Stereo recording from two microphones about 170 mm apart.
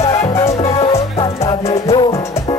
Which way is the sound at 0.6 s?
35° left (ahead or behind).